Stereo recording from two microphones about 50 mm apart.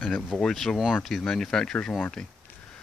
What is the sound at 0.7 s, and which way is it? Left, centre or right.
Speech, left.